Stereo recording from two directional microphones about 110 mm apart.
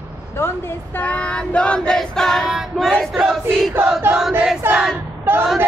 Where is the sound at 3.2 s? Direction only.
5° right (ahead or behind).